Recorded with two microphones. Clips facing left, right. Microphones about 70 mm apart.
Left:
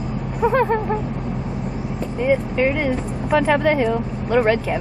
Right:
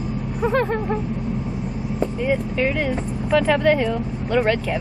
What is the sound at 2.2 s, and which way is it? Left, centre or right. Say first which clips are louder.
Speech: left 5 dB; centre.